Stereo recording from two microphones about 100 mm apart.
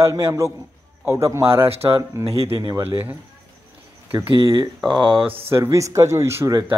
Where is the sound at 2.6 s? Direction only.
40° right (ahead or behind).